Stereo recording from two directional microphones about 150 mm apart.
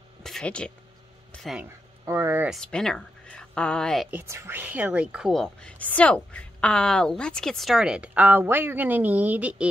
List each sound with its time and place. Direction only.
0.2 s speech: 5° left (ahead or behind)
1.6 s speech: 15° right (ahead or behind)
2.5 s speech: 5° left (ahead or behind)
4.1 s speech: 15° right (ahead or behind)